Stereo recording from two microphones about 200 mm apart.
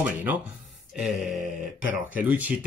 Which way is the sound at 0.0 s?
10° right (ahead or behind).